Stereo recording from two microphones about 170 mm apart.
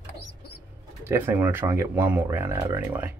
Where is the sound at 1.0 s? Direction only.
15° right (ahead or behind).